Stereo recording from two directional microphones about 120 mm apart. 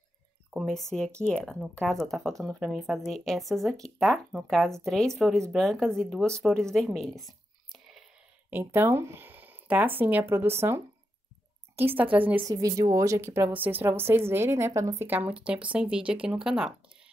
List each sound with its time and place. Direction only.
0.5 s a woman's voice: centre (ahead or behind)
8.5 s a woman's voice: 20° right (ahead or behind)
12.4 s a woman's voice: 30° right (ahead or behind); by 16.7 s 5° right (ahead or behind)